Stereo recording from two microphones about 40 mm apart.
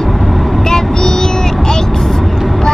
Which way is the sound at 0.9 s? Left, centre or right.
Centre.